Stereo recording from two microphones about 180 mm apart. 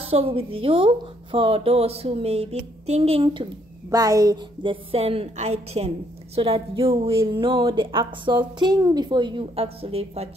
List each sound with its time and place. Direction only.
0.0 s speech: 30° right (ahead or behind)
3.9 s a woman's voice: 20° right (ahead or behind)
4.9 s a woman's voice: 35° right (ahead or behind)